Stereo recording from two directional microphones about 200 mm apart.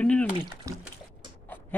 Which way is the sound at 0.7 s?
15° right (ahead or behind).